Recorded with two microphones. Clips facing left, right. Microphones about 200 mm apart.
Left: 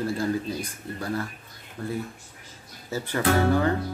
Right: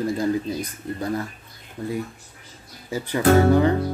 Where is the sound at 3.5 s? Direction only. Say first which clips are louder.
Right 5 dB; 20° right (ahead or behind).